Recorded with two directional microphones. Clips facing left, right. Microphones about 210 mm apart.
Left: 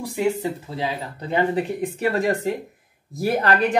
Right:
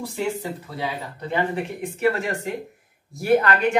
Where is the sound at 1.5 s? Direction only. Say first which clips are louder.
Left 4 dB; 35° left (ahead or behind).